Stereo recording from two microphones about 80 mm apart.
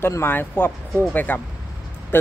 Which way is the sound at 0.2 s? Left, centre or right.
Left.